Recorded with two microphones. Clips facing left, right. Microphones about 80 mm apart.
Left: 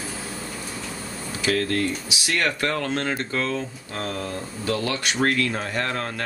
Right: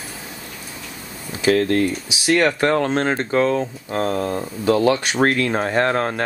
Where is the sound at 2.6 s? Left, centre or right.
Right.